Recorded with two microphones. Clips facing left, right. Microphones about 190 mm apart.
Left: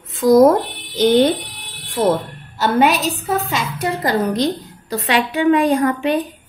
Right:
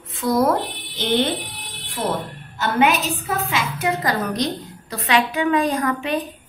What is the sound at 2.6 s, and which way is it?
Speech, 35° left (ahead or behind).